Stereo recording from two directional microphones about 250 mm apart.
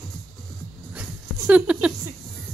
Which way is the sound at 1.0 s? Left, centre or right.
Centre.